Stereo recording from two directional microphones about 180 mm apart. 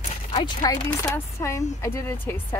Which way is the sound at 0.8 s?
15° left (ahead or behind).